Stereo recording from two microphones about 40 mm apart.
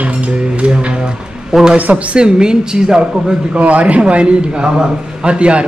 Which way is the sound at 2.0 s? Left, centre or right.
Right.